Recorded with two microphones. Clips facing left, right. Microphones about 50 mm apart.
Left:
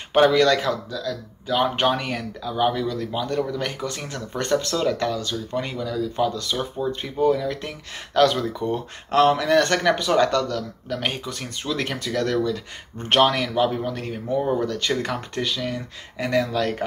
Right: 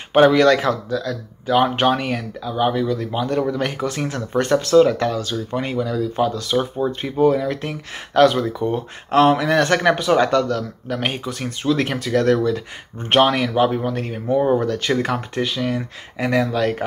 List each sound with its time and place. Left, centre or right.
0.1 s speech: right
1.5 s speech: centre
8.5 s speech: centre
9.1 s speech: right
13.1 s speech: centre
14.9 s speech: centre